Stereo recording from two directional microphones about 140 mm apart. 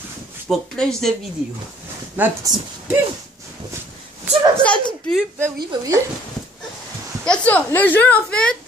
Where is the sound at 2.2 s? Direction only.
10° right (ahead or behind).